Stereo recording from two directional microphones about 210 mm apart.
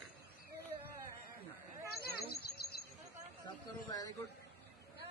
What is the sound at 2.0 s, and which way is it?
Bird, 45° left (ahead or behind).